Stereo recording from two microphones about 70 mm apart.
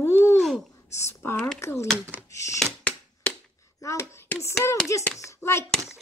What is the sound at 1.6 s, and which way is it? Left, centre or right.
Speech, left.